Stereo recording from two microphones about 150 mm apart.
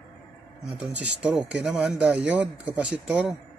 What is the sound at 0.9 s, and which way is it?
Speech, 5° right (ahead or behind).